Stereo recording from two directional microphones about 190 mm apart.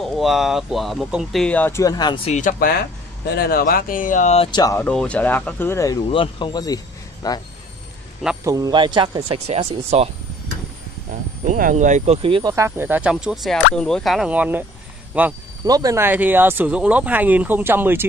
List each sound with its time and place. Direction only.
0.0 s speech: centre (ahead or behind); by 2.3 s 25° left (ahead or behind)
2.3 s speech: 45° left (ahead or behind)
3.3 s speech: 55° left (ahead or behind); by 4.5 s 35° left (ahead or behind)
4.5 s speech: 25° left (ahead or behind)
4.7 s speech: 5° left (ahead or behind)
6.0 s speech: 30° left (ahead or behind)
8.5 s speech: 20° right (ahead or behind)
11.4 s speech: 45° right (ahead or behind); by 15.3 s 10° right (ahead or behind)
15.6 s speech: 20° right (ahead or behind)